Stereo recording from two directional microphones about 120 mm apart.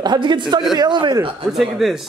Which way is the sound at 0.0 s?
35° right (ahead or behind).